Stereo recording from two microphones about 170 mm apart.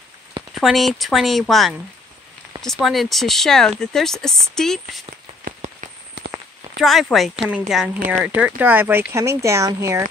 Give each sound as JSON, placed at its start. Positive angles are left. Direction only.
{"t": 0.6, "sound": "speech", "side_deg": 0}
{"t": 5.4, "sound": "rain on surface", "side_deg": -45}
{"t": 6.2, "sound": "a sound", "side_deg": -90}
{"t": 6.8, "sound": "speech", "side_deg": 0}